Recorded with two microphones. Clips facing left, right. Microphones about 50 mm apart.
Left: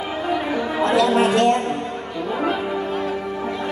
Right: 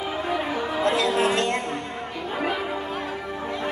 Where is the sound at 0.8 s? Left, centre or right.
Left.